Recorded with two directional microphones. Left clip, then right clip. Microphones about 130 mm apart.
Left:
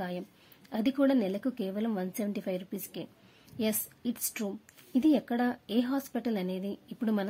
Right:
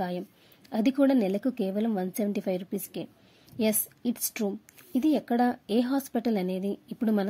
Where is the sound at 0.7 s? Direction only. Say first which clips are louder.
Right 3 dB; 25° right (ahead or behind).